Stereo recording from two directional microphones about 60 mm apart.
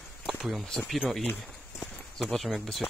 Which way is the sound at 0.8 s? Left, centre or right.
Centre.